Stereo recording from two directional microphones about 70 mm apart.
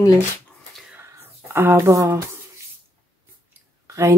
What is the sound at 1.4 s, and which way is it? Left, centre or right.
Speech, right.